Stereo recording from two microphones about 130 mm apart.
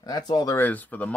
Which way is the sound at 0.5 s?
15° left (ahead or behind).